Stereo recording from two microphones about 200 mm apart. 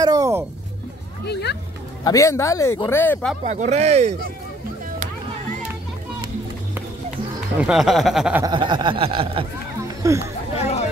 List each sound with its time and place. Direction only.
0.0 s speech: 15° right (ahead or behind)
1.2 s speech: 55° left (ahead or behind)
2.0 s speech: 15° left (ahead or behind)
3.4 s speech: 35° right (ahead or behind)
7.6 s speech: centre (ahead or behind)
8.4 s a sound: 20° right (ahead or behind)
10.0 s speech: 15° right (ahead or behind)
10.6 s a sound: 35° left (ahead or behind)